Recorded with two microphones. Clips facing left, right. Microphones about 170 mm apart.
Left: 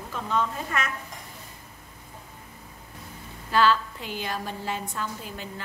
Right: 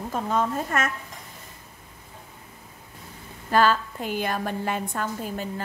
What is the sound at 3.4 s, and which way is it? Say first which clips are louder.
A woman's voice: right 1 dB; 50° right (ahead or behind).